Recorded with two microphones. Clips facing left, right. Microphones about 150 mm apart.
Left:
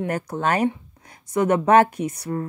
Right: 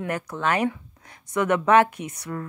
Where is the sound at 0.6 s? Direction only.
30° left (ahead or behind).